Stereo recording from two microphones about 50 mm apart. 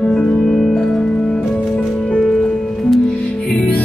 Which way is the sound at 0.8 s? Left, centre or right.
Centre.